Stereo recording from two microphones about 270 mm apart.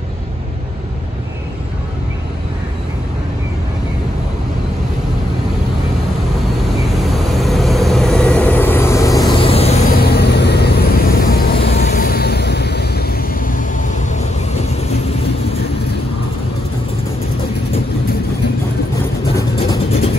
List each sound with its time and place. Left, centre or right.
6.9 s vehicle: centre; by 9.8 s left
9.9 s vehicle: left